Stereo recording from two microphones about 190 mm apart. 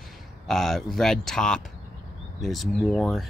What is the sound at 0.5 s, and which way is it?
Speech, centre (ahead or behind).